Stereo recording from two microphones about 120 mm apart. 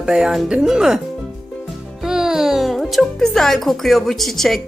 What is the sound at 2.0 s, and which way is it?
Speech, 5° right (ahead or behind).